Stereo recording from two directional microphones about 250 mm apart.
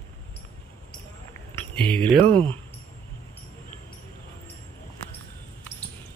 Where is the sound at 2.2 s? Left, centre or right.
Right.